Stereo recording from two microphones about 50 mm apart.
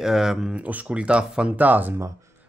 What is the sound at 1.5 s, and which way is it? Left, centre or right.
Speech, right.